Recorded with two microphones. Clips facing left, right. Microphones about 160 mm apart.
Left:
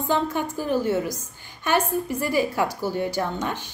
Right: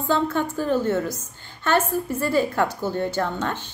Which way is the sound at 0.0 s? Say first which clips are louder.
Right 2 dB; 10° left (ahead or behind).